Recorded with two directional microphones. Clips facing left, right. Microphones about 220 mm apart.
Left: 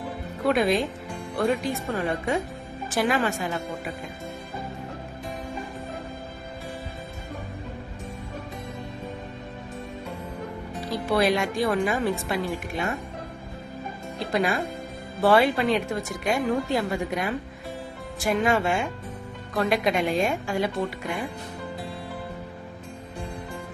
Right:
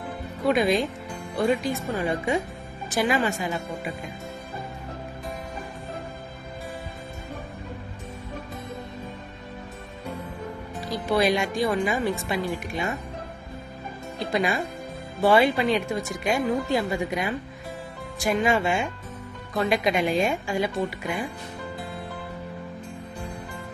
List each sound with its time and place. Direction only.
0.5 s speech: centre (ahead or behind)
2.9 s speech: centre (ahead or behind)
10.7 s speech: centre (ahead or behind)
14.2 s speech: centre (ahead or behind)